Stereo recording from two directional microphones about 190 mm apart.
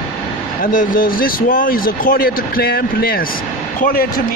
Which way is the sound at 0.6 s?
45° left (ahead or behind).